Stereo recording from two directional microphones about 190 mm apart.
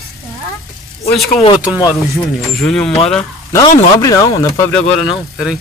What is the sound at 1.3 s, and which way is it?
Speech, 25° left (ahead or behind).